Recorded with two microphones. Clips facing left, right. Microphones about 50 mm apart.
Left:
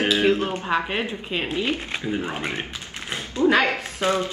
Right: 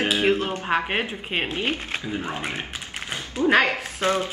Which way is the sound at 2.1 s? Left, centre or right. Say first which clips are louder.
Left 3 dB; left.